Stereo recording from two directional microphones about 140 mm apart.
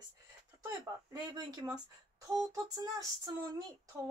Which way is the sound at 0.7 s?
30° right (ahead or behind).